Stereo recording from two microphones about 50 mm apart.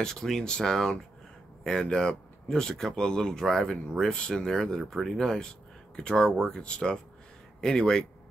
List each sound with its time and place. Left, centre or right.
0.0 s speech: centre